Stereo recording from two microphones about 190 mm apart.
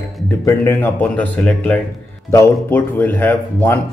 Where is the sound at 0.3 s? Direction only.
10° left (ahead or behind).